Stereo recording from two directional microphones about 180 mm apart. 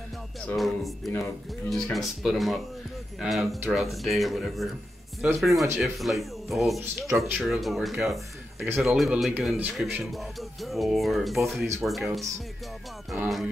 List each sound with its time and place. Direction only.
0.6 s a man's voice: centre (ahead or behind)
6.8 s speech: 15° right (ahead or behind)
7.3 s a man's voice: centre (ahead or behind)